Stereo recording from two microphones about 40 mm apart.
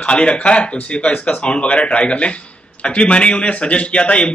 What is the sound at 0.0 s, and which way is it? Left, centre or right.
Speech, left.